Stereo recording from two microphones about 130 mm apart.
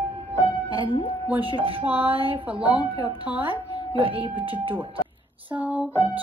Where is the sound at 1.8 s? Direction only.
15° right (ahead or behind).